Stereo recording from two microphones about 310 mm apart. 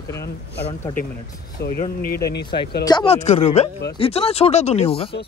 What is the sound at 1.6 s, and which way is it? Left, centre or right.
Speech, left.